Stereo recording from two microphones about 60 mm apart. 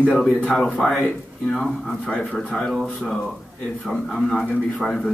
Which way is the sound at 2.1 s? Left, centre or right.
Centre.